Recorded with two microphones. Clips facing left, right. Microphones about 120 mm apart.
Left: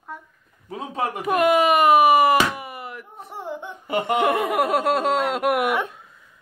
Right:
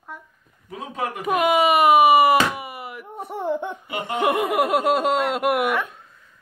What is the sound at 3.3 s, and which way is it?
Laughter, 55° right (ahead or behind).